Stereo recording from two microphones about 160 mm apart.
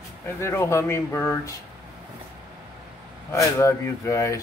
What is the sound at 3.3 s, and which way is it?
Speech, 20° left (ahead or behind).